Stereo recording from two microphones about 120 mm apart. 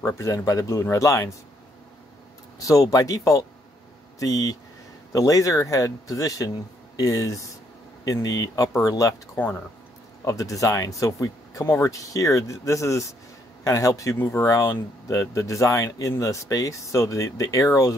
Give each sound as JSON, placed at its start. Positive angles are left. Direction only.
{"t": 0.0, "sound": "speech", "side_deg": 25}
{"t": 2.6, "sound": "speech", "side_deg": 30}